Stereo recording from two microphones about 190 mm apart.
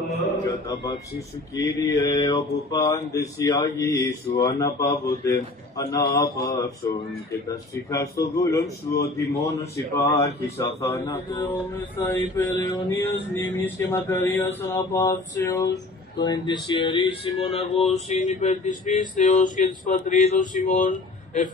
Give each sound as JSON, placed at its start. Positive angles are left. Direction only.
{"t": 1.5, "sound": "speech", "side_deg": 15}